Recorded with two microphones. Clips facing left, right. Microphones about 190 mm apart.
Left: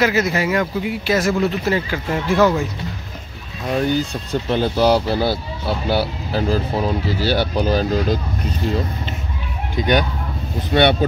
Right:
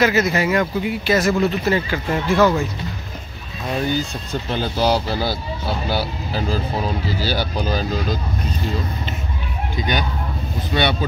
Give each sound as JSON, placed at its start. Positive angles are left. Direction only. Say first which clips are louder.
{"t": 0.0, "sound": "speech", "louder": "even", "side_deg": 5}
{"t": 3.8, "sound": "speech", "louder": "left 2 dB", "side_deg": 65}
{"t": 9.8, "sound": "speech", "louder": "left 6 dB", "side_deg": 60}